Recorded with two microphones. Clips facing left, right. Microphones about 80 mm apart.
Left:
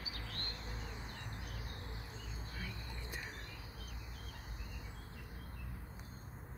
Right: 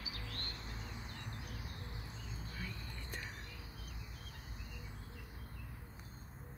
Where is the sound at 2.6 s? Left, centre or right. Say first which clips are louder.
Right 1 dB; centre.